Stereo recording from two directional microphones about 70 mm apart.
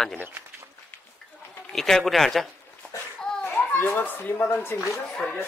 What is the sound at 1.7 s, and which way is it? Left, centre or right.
Speech, centre.